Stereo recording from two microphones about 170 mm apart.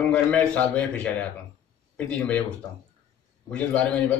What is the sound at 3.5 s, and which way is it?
Speech, 5° left (ahead or behind).